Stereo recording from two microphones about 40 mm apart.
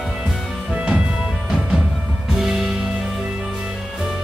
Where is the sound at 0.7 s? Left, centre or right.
Right.